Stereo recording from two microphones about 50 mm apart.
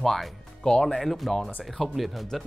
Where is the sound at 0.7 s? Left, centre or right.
Centre.